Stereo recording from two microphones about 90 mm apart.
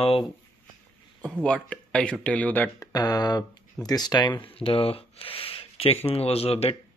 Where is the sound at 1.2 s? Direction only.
15° left (ahead or behind).